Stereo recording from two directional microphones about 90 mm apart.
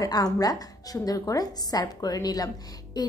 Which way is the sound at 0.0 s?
45° left (ahead or behind).